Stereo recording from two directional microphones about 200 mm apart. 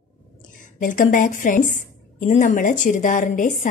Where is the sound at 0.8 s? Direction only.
40° left (ahead or behind).